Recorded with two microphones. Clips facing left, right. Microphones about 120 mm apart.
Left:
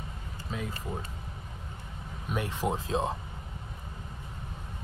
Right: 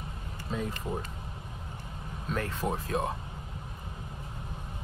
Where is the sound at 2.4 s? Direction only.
20° left (ahead or behind).